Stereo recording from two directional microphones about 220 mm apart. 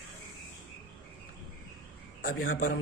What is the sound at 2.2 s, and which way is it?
Speech, 40° left (ahead or behind).